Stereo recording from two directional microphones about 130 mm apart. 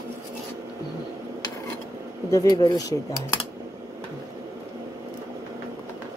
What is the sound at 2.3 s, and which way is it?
Speech, 30° left (ahead or behind).